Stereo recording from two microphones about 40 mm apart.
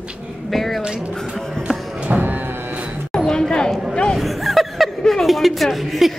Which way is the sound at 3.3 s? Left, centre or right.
Centre.